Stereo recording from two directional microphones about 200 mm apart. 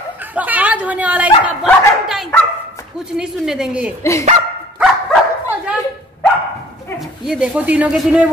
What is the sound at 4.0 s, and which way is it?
Speech, 15° left (ahead or behind).